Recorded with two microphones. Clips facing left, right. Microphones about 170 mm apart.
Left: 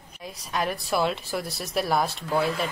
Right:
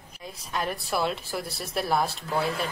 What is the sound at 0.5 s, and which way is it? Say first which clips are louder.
Speech: left 3 dB; centre (ahead or behind).